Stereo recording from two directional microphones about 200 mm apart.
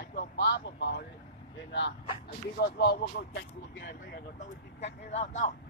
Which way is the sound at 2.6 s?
50° left (ahead or behind).